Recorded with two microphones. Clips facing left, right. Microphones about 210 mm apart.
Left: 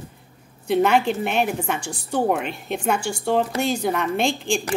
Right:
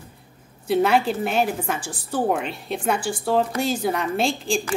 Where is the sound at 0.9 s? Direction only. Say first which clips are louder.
Even; 35° right (ahead or behind).